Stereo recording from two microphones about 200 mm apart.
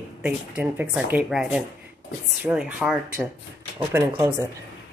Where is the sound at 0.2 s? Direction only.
5° right (ahead or behind).